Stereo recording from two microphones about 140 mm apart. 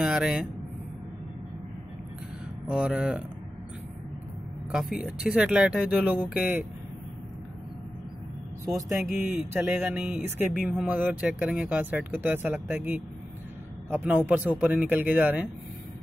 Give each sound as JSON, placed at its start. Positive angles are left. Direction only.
{"t": 0.0, "sound": "speech", "side_deg": -5}
{"t": 2.7, "sound": "speech", "side_deg": -5}
{"t": 4.7, "sound": "speech", "side_deg": 0}
{"t": 8.6, "sound": "speech", "side_deg": -25}
{"t": 9.2, "sound": "speech", "side_deg": -10}